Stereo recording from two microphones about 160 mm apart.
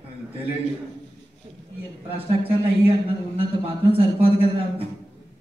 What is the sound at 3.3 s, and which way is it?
A man's voice, 35° right (ahead or behind).